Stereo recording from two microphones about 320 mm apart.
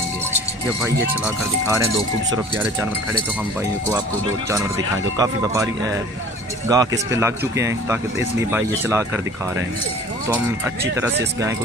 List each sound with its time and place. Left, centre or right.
0.7 s speech: centre
4.5 s speech: centre
10.2 s speech: centre